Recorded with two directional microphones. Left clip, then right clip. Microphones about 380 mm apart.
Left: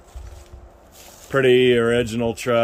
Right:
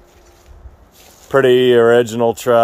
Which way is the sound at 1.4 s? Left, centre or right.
Centre.